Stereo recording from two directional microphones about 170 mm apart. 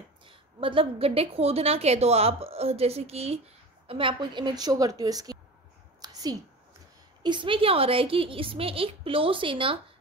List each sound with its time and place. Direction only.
0.3 s a woman's voice: 30° right (ahead or behind)
5.9 s a sound: 25° right (ahead or behind)
7.2 s a woman's voice: 30° right (ahead or behind)